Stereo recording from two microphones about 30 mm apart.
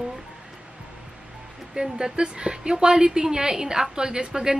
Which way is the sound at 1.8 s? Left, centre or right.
Right.